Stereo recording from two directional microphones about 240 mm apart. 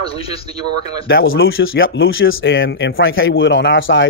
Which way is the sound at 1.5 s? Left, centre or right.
Left.